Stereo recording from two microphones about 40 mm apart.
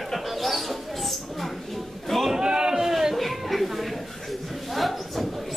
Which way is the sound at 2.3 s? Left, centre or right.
Centre.